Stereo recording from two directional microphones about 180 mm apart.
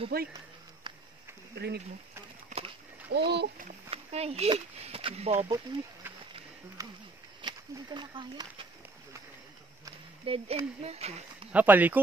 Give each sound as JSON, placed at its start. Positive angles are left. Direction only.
{"t": 0.1, "sound": "speech", "side_deg": -60}
{"t": 1.6, "sound": "a child's voice", "side_deg": -70}
{"t": 3.1, "sound": "a child's voice", "side_deg": -70}
{"t": 3.9, "sound": "speech", "side_deg": -35}
{"t": 5.3, "sound": "speech", "side_deg": -15}
{"t": 6.8, "sound": "speech", "side_deg": -20}
{"t": 9.8, "sound": "speech", "side_deg": -30}
{"t": 11.5, "sound": "speech", "side_deg": -10}